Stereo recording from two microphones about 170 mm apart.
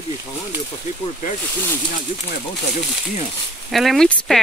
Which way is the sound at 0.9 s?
55° left (ahead or behind).